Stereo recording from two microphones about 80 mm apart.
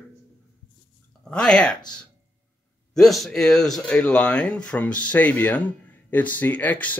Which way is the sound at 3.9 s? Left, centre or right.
Centre.